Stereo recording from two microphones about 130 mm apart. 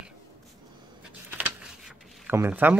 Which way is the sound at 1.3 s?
10° right (ahead or behind).